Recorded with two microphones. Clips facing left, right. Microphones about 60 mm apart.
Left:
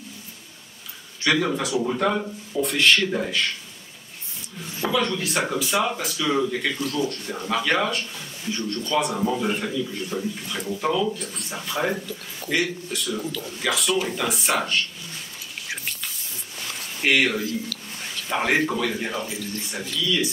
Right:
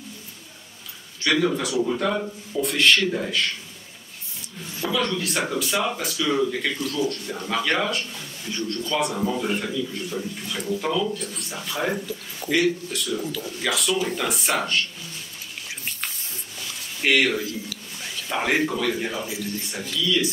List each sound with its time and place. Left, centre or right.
1.2 s speech: centre
2.1 s speech: centre
4.7 s a sound: centre
5.0 s speech: centre
11.9 s speech: centre
12.4 s speech: centre
17.0 s speech: centre